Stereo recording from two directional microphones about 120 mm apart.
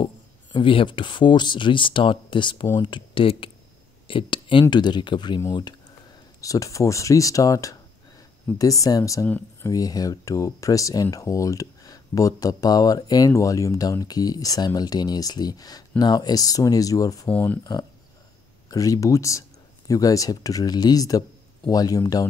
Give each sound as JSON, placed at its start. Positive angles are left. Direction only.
{"t": 0.0, "sound": "speech", "side_deg": 45}
{"t": 17.3, "sound": "speech", "side_deg": 15}
{"t": 18.7, "sound": "speech", "side_deg": 30}